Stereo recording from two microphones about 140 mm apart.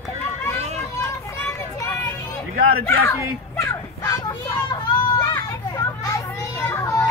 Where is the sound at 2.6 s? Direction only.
90° right.